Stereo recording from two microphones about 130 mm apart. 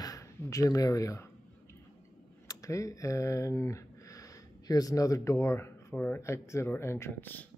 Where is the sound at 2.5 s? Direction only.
25° left (ahead or behind).